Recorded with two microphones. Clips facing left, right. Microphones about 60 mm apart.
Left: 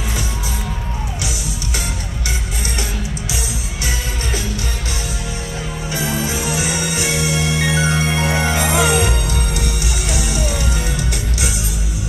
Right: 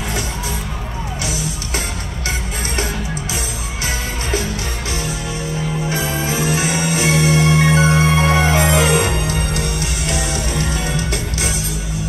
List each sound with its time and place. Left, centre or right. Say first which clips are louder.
5.9 s music: left 2 dB; right